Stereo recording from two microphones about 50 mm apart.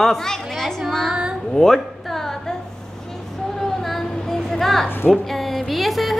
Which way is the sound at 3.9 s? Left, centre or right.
Centre.